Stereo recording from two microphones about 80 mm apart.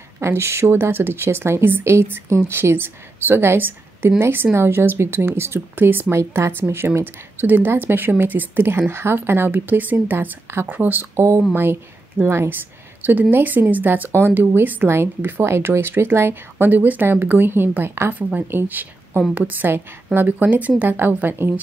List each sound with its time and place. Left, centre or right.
0.2 s a woman's voice: right
11.1 s a woman's voice: right